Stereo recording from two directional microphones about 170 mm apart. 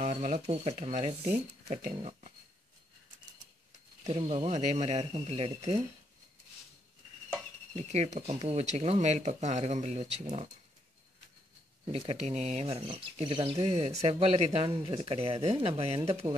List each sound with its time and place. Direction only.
0.0 s speech: 45° right (ahead or behind)
1.7 s a sound: 50° right (ahead or behind)
4.1 s speech: 35° right (ahead or behind)
7.7 s speech: 40° right (ahead or behind)
11.8 s speech: 35° right (ahead or behind)